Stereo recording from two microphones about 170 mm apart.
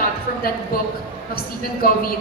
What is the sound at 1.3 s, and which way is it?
Speech, 60° left (ahead or behind).